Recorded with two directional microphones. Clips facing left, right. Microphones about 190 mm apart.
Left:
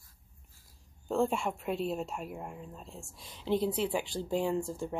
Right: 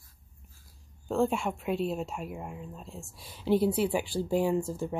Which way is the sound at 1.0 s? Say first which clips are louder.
Right 2 dB; centre (ahead or behind).